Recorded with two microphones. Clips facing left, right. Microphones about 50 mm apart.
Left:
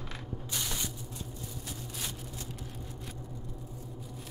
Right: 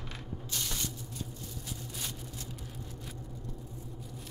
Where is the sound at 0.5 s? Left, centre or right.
Centre.